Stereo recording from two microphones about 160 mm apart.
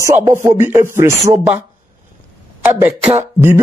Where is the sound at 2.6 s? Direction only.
10° right (ahead or behind).